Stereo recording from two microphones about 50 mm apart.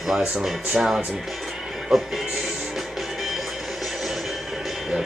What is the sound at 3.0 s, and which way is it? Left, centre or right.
Music, centre.